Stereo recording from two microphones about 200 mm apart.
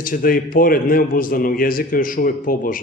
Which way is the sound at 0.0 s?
45° left (ahead or behind).